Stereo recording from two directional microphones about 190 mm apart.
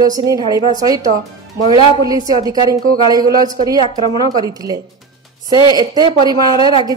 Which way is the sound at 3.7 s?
25° left (ahead or behind).